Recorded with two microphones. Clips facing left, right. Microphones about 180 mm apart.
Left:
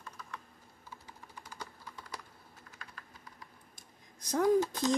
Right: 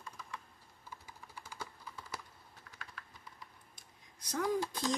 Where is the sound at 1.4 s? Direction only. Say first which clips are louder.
Even; 10° right (ahead or behind).